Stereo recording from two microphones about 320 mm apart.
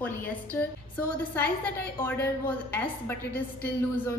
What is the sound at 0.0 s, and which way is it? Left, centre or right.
A woman's voice, centre.